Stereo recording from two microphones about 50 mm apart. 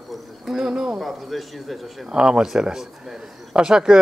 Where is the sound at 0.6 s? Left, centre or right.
Centre.